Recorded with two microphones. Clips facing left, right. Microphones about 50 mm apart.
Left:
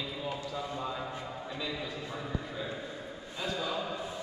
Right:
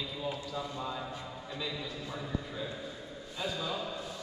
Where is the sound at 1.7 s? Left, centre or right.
Centre.